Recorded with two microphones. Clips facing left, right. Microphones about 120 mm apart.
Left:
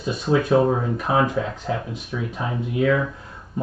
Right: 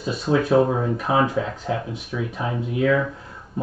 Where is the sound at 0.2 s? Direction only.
35° right (ahead or behind).